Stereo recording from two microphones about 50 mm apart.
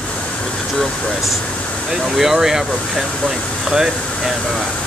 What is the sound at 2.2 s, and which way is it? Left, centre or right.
Speech, centre.